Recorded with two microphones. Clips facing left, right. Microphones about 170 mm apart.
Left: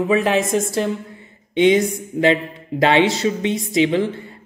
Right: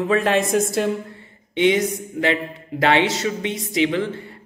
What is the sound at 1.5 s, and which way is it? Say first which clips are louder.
A woman's voice: left 3 dB; 20° left (ahead or behind).